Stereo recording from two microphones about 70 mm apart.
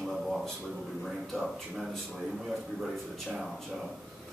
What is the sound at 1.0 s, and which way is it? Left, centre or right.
A man's voice, centre.